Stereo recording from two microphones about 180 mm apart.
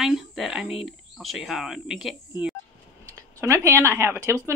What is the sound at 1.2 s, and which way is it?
Speech, centre (ahead or behind).